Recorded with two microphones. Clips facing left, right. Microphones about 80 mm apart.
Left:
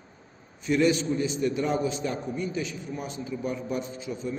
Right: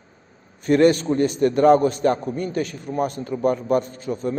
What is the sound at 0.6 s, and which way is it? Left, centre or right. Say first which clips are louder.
A man's voice: right 7 dB; right.